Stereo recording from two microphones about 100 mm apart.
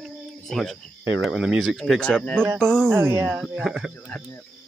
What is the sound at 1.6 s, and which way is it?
Speech, 5° left (ahead or behind).